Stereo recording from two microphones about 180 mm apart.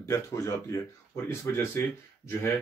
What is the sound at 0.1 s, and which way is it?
Speech, 15° left (ahead or behind).